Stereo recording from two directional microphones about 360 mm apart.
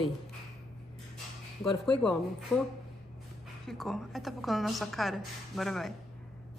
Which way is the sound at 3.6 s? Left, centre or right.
Centre.